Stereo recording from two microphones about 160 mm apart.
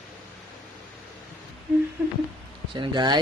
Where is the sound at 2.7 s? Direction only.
30° right (ahead or behind).